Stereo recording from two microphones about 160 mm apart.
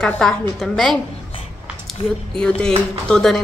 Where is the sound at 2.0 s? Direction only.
35° left (ahead or behind).